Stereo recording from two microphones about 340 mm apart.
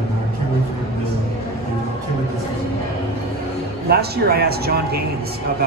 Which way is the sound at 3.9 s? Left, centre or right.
Right.